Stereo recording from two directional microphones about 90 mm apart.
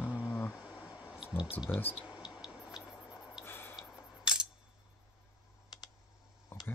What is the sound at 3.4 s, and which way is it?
Tick-tock, 25° left (ahead or behind).